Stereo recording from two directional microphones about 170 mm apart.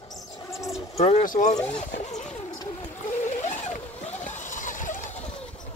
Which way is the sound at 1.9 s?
40° left (ahead or behind).